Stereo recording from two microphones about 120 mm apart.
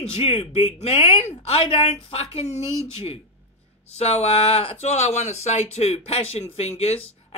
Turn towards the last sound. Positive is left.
turn(degrees=60)  # may be behind; listen again after turning